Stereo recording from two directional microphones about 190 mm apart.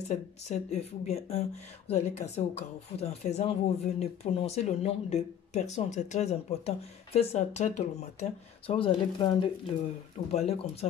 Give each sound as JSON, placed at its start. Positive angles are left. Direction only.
{"t": 0.1, "sound": "speech", "side_deg": 35}